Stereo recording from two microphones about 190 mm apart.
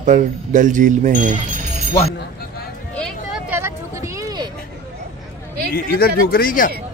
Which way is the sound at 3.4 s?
10° right (ahead or behind).